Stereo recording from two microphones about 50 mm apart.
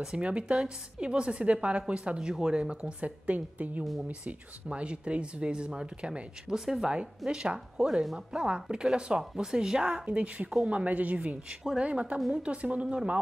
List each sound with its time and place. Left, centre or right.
0.0 s a woman's voice: right
6.5 s speech: centre
6.9 s a woman's voice: right
7.7 s speech: centre
9.9 s a woman's voice: right
11.1 s a woman's voice: centre